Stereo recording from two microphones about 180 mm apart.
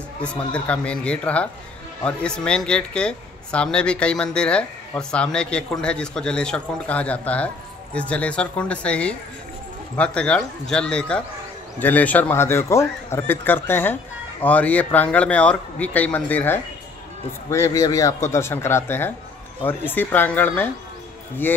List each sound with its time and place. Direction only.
0.2 s speech: 5° left (ahead or behind)